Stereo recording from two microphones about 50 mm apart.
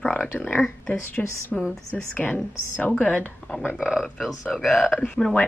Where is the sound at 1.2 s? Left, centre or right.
Centre.